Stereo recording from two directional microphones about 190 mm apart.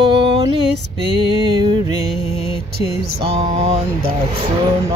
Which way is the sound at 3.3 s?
35° right (ahead or behind).